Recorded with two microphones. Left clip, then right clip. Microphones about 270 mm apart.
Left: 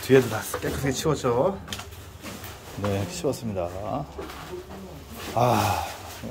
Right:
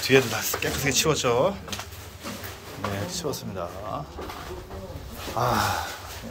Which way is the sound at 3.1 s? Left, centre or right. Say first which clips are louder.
Left 3 dB; left.